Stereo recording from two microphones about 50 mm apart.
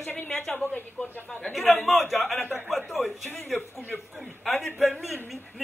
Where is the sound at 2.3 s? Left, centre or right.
Left.